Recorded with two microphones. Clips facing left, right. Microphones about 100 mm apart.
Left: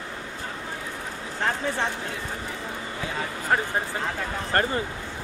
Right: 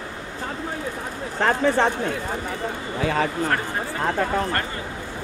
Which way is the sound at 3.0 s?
75° right (ahead or behind).